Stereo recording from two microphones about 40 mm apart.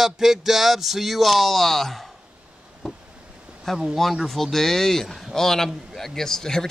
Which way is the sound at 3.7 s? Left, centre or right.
Centre.